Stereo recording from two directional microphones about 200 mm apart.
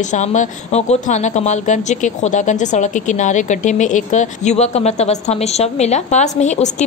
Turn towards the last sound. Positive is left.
turn(degrees=35)  # may be behind; listen again after turning